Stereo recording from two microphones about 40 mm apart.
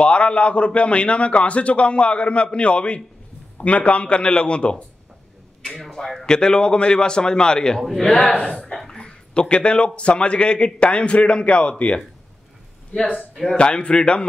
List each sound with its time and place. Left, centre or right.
0.0 s a man's voice: left
5.6 s a man's voice: centre; by 11.7 s left
12.9 s a man's voice: left